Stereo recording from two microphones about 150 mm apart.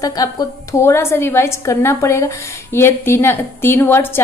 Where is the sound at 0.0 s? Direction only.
25° left (ahead or behind).